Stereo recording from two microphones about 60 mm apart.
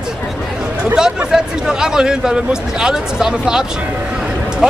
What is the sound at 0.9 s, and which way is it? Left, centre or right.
A man's voice, centre.